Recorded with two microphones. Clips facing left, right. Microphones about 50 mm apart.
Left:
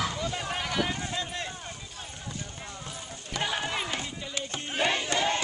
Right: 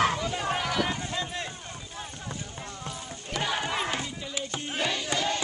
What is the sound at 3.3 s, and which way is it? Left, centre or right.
Run, centre.